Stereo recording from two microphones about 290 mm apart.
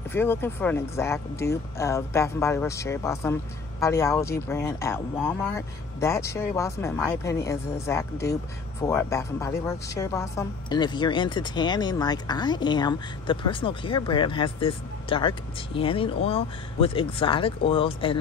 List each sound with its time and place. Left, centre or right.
0.1 s a woman's voice: centre